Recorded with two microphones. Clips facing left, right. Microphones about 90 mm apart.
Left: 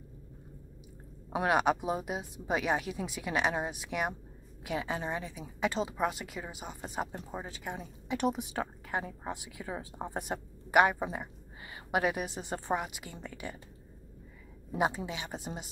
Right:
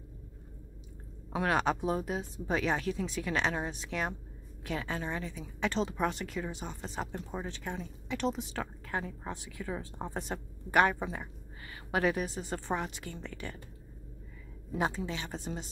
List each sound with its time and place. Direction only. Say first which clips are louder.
1.3 s a woman's voice: left 2 dB; 15° left (ahead or behind)
14.7 s a woman's voice: left 2 dB; 15° left (ahead or behind)